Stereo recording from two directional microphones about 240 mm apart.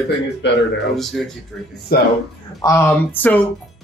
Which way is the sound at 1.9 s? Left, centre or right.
Left.